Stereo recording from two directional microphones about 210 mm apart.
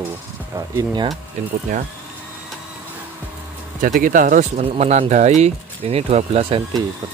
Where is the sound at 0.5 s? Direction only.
20° right (ahead or behind).